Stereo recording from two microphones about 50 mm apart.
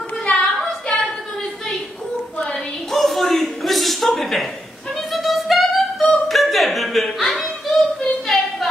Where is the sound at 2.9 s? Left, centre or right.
Centre.